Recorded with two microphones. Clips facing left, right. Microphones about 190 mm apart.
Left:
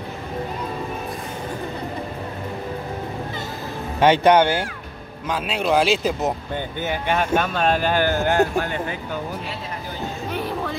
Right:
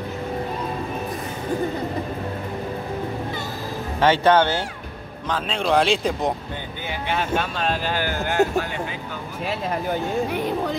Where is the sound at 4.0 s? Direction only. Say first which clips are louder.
Left 2 dB; 15° left (ahead or behind).